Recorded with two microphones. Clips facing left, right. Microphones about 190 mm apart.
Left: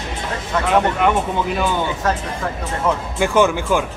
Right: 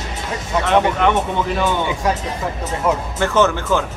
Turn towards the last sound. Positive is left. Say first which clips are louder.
# even
turn(degrees=10)  # may be behind; listen again after turning